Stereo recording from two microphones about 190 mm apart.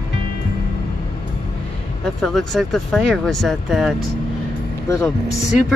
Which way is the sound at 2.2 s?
Centre (ahead or behind).